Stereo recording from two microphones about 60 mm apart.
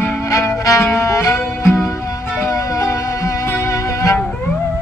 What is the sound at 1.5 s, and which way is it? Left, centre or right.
Music, left.